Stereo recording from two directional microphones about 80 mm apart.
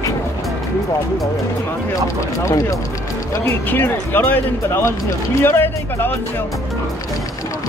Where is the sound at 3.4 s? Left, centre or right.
Left.